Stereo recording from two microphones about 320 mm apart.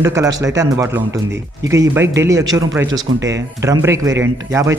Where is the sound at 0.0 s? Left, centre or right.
Centre.